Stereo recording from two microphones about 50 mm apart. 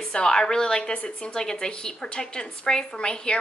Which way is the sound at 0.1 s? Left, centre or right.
Centre.